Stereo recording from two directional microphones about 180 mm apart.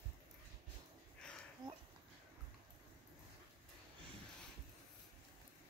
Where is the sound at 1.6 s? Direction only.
25° right (ahead or behind).